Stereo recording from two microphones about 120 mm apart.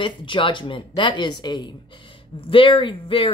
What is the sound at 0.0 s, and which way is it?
Speech, 45° left (ahead or behind).